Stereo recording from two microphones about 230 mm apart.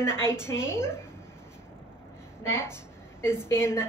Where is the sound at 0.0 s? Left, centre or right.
Centre.